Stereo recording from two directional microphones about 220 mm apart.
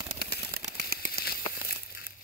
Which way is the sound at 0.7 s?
50° right (ahead or behind).